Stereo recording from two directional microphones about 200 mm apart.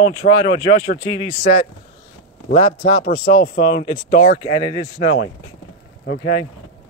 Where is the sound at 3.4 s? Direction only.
45° left (ahead or behind).